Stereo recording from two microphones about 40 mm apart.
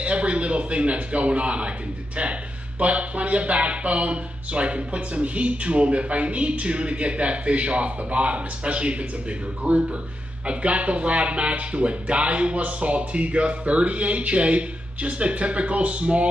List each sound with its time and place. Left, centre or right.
0.0 s a man's voice: right
2.8 s speech: right